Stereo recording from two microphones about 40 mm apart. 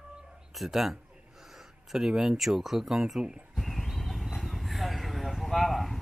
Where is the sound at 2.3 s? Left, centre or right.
Centre.